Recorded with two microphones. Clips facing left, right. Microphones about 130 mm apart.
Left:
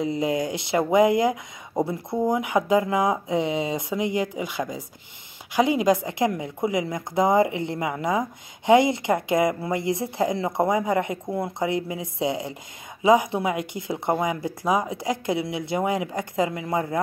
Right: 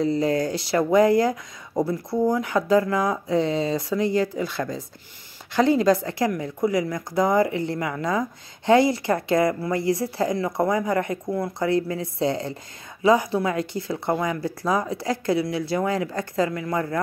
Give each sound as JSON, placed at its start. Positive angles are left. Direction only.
{"t": 0.0, "sound": "speech", "side_deg": 15}